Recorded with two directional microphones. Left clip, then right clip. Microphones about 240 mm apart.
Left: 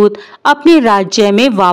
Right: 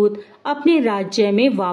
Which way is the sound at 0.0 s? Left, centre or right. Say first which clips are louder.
Left 9 dB; left.